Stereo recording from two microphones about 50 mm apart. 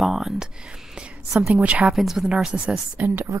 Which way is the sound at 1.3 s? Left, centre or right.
Centre.